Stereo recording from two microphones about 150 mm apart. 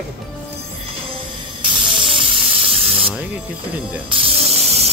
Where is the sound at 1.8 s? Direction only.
35° right (ahead or behind).